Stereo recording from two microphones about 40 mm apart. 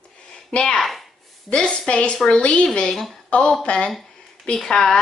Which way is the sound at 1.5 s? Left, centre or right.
Left.